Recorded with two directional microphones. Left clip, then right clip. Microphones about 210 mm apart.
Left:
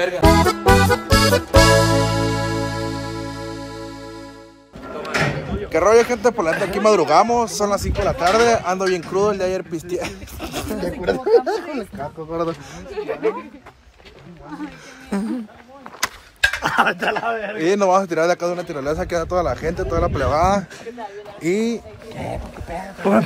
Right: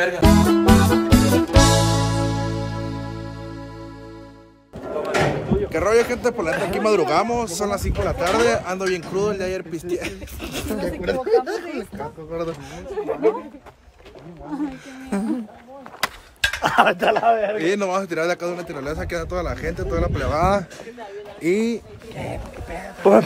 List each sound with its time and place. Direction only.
0.0 s music: centre (ahead or behind)
4.9 s music: 55° right (ahead or behind)
5.7 s a man's voice: centre (ahead or behind)
15.1 s speech: 20° right (ahead or behind)
16.3 s a sound: 5° right (ahead or behind)
16.6 s speech: 35° right (ahead or behind)
17.6 s a man's voice: centre (ahead or behind)
20.3 s speech: 20° right (ahead or behind)